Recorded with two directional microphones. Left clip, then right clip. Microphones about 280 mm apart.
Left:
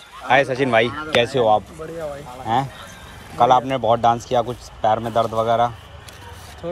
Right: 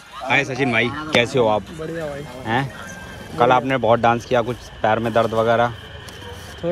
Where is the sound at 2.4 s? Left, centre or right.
Centre.